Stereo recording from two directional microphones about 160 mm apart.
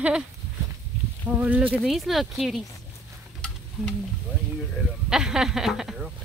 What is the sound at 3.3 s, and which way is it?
Stir, 5° left (ahead or behind).